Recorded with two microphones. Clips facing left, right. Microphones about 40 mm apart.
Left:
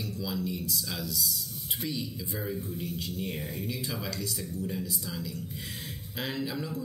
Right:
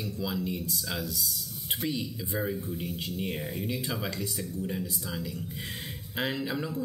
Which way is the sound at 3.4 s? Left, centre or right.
Centre.